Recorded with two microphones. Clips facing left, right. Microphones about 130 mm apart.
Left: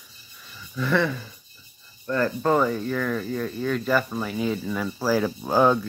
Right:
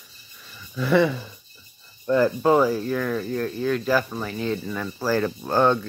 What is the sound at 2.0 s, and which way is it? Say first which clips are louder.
Speech: right 4 dB; 15° right (ahead or behind).